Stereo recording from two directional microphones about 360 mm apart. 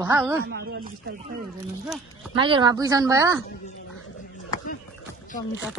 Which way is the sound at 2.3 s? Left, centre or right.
Centre.